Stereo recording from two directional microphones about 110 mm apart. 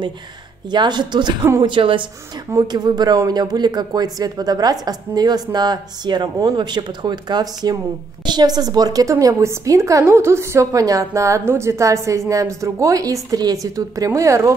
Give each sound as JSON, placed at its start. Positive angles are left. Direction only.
{"t": 0.7, "sound": "speech", "side_deg": -40}
{"t": 1.4, "sound": "a woman's voice", "side_deg": -25}
{"t": 1.7, "sound": "a woman's voice", "side_deg": -50}
{"t": 2.5, "sound": "speech", "side_deg": -40}
{"t": 9.1, "sound": "a woman's voice", "side_deg": -25}